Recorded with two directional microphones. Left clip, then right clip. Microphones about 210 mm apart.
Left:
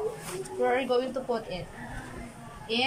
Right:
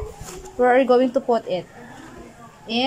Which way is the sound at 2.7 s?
30° right (ahead or behind).